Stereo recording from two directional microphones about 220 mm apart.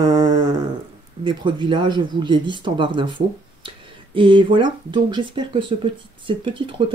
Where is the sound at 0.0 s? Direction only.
20° right (ahead or behind).